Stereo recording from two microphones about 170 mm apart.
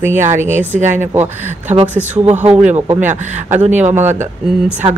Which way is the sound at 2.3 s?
40° right (ahead or behind).